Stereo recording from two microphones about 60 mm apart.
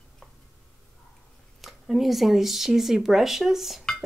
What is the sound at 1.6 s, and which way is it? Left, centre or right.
Speech, centre.